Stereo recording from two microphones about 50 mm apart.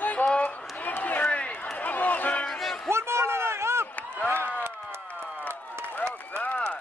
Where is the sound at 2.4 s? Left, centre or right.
Centre.